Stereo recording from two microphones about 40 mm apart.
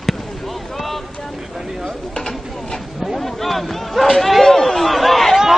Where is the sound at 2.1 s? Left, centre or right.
Centre.